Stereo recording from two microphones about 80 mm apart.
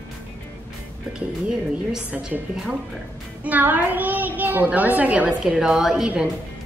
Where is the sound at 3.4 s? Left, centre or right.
Right.